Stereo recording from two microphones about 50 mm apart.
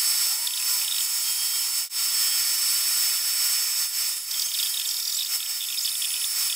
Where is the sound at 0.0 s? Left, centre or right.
Centre.